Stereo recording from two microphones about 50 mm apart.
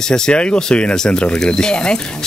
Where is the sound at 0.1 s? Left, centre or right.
Centre.